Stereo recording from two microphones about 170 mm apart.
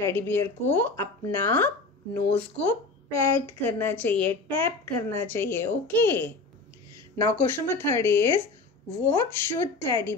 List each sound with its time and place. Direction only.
0.0 s a woman's voice: 15° left (ahead or behind)